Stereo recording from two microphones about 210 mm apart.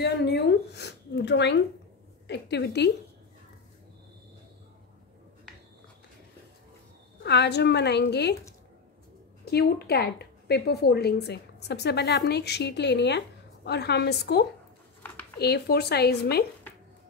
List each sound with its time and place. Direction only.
0.0 s a woman's voice: 55° left (ahead or behind)
7.2 s a woman's voice: 55° left (ahead or behind)
9.4 s a woman's voice: 50° left (ahead or behind)